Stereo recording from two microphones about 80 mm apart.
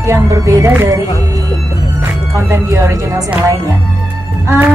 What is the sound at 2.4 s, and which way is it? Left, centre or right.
Speech, right.